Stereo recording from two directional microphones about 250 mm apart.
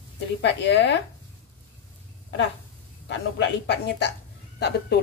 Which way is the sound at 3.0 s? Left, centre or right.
Left.